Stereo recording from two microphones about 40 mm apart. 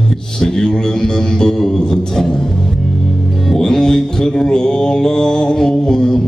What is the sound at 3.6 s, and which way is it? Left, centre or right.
Mantra, centre.